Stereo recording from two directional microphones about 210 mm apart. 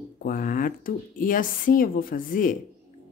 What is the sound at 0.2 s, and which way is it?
Speech, 40° left (ahead or behind).